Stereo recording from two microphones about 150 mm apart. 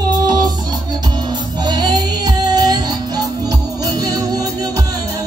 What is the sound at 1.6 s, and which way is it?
Music, 30° right (ahead or behind).